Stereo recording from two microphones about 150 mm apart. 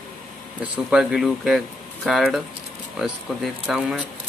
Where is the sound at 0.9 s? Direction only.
5° right (ahead or behind).